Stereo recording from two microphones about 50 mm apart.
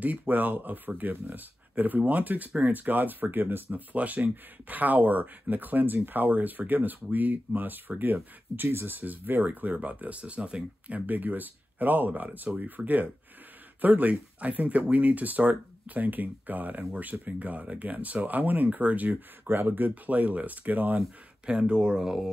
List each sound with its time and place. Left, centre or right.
0.0 s speech: right
21.5 s speech: centre